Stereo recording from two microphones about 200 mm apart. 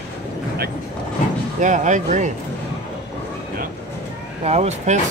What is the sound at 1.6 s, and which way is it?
Speech, 40° right (ahead or behind).